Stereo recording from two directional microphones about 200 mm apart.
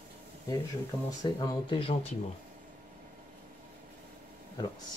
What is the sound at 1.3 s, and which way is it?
Speech, 20° left (ahead or behind).